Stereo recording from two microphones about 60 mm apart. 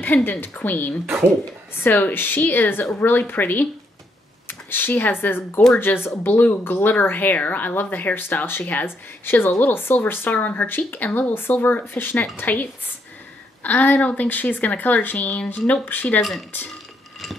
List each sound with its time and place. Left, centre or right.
0.0 s a woman's voice: left
16.2 s speech: centre